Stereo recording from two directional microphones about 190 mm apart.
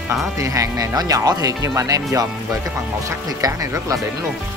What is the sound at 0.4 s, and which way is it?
Speech, 15° right (ahead or behind).